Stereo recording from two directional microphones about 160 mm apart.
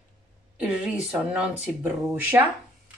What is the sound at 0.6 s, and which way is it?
Speech, 5° right (ahead or behind).